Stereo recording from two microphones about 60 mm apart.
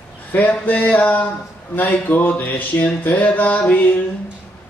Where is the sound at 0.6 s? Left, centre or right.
Left.